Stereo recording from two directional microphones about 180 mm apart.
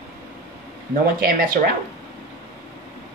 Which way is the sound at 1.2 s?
50° right (ahead or behind).